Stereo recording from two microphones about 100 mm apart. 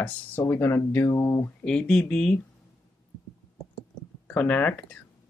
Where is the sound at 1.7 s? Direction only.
10° left (ahead or behind).